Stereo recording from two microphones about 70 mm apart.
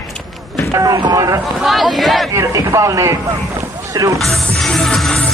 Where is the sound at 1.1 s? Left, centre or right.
Right.